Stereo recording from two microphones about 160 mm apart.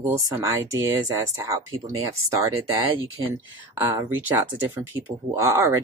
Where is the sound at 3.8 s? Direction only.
15° right (ahead or behind).